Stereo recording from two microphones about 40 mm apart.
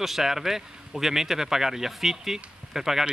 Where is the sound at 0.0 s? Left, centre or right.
Centre.